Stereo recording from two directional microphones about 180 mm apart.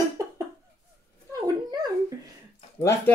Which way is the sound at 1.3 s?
20° right (ahead or behind).